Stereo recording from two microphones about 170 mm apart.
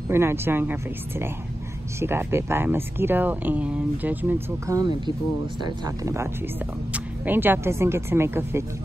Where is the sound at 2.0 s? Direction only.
15° right (ahead or behind).